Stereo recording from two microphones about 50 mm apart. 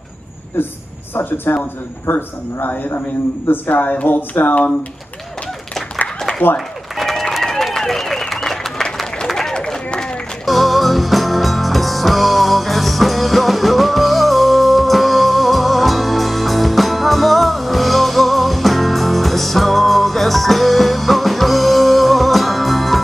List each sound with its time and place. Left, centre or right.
1.5 s a man's voice: left
3.6 s speech: left
7.0 s a sound: centre
10.4 s music: centre